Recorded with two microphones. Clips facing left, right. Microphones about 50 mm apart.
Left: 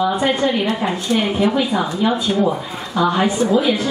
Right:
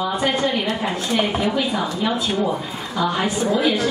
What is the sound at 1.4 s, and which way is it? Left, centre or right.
Speech, left.